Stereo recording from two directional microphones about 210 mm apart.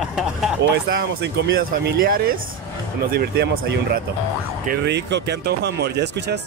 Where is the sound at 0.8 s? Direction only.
45° right (ahead or behind).